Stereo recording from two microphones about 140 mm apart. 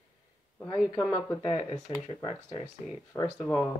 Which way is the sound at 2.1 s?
30° left (ahead or behind).